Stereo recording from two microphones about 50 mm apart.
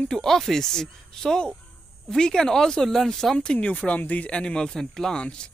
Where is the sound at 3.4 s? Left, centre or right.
Left.